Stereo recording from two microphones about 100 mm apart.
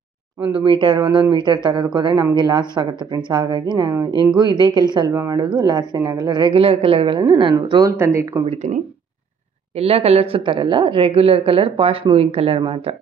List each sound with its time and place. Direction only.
0.7 s a woman's voice: 55° right (ahead or behind)
5.1 s speech: 30° right (ahead or behind)
5.6 s a woman's voice: 45° right (ahead or behind)
7.8 s speech: 25° right (ahead or behind)
9.8 s a woman's voice: 90° right; by 12.9 s 70° right (ahead or behind)